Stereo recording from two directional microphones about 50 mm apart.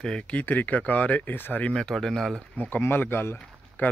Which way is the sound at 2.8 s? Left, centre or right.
Left.